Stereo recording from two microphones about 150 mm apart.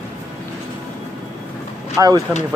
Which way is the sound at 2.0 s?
20° right (ahead or behind).